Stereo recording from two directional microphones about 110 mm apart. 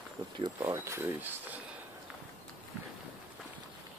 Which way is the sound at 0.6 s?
25° right (ahead or behind).